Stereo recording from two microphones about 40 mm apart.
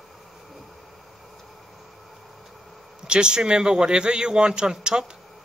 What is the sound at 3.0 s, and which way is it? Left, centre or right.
Speech, right.